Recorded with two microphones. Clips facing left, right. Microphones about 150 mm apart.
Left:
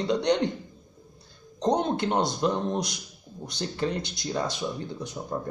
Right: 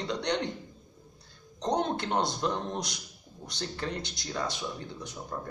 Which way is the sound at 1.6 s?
10° left (ahead or behind).